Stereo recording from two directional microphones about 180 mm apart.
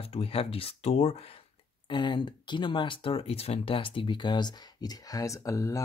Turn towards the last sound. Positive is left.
turn(degrees=15)  # may be behind; listen again after turning